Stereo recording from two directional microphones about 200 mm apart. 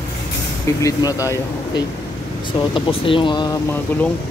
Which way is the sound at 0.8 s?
15° left (ahead or behind).